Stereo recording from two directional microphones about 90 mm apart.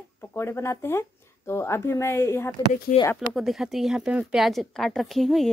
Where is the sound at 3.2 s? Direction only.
Centre (ahead or behind).